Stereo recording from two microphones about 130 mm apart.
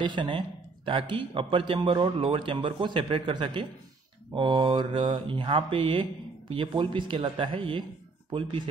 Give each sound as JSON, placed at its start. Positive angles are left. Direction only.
{"t": 0.0, "sound": "speech", "side_deg": -40}